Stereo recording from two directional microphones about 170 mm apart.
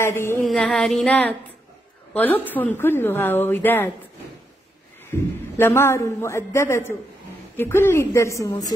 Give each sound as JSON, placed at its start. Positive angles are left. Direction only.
{"t": 0.0, "sound": "a woman's voice", "side_deg": 15}
{"t": 0.4, "sound": "a sound", "side_deg": 5}
{"t": 2.5, "sound": "a woman's voice", "side_deg": 10}
{"t": 5.6, "sound": "a woman's voice", "side_deg": 15}